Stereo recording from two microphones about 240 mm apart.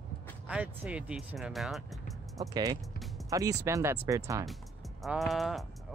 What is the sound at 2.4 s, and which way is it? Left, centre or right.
Speech, centre.